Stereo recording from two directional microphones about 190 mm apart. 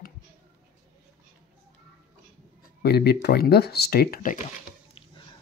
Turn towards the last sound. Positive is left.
turn(degrees=50)  # may be behind; listen again after turning